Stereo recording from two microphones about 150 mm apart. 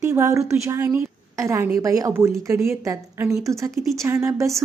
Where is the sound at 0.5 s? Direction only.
15° right (ahead or behind).